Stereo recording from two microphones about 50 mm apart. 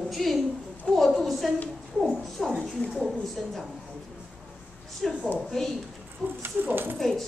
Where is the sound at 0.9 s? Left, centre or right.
Centre.